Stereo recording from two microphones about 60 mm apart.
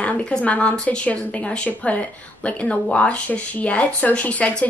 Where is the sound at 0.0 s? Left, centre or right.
Centre.